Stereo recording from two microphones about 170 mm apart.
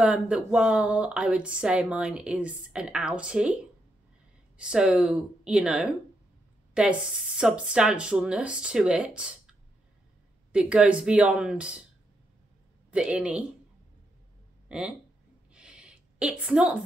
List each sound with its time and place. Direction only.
0.0 s speech: 5° right (ahead or behind)
12.9 s speech: 5° right (ahead or behind)
14.7 s speech: 5° right (ahead or behind)
15.5 s a sound: 5° right (ahead or behind)